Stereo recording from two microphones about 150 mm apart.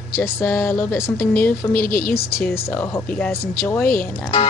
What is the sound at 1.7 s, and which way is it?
Speech, 75° left (ahead or behind).